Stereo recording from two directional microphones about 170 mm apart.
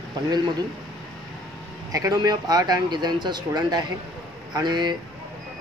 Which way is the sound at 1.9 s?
20° right (ahead or behind).